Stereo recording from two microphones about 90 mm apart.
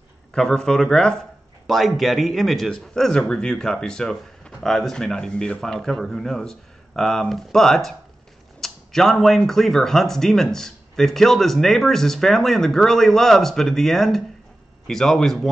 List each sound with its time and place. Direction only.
0.3 s a man's voice: 5° left (ahead or behind)